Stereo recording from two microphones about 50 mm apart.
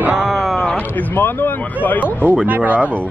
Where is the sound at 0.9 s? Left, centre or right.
Left.